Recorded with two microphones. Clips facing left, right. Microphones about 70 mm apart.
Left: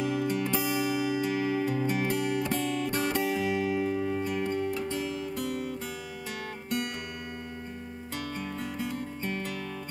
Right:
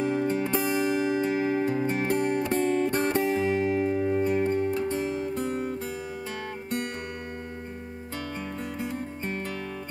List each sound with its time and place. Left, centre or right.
0.0 s music: right
8.4 s music: right